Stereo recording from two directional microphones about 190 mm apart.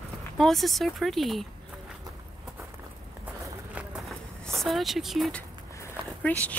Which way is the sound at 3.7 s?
5° right (ahead or behind).